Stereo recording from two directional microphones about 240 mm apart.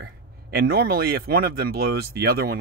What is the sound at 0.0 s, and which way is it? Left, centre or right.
Speech, right.